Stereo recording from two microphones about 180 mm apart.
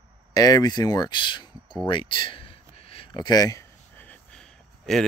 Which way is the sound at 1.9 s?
30° left (ahead or behind).